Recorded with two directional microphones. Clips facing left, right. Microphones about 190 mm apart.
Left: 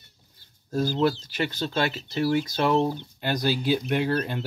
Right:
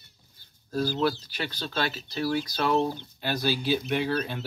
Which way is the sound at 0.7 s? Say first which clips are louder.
Left 3 dB; 20° left (ahead or behind).